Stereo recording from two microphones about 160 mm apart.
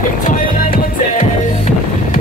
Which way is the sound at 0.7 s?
60° left (ahead or behind).